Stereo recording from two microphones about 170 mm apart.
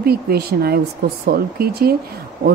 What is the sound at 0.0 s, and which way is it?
Speech, 65° right (ahead or behind).